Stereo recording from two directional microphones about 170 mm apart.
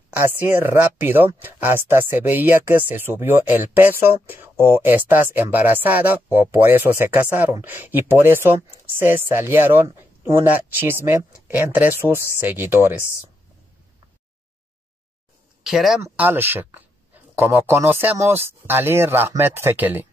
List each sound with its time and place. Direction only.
0.1 s speech: 10° right (ahead or behind)
15.6 s speech: centre (ahead or behind)
16.0 s speech: 10° right (ahead or behind)